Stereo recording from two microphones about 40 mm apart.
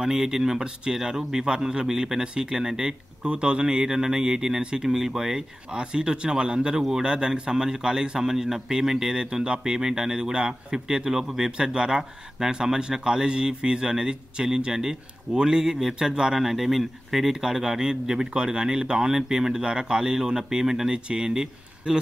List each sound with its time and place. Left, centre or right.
0.0 s a man's voice: centre
9.2 s a man's voice: right
16.3 s a man's voice: centre